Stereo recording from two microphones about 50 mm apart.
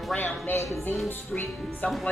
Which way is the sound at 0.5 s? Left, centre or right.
Left.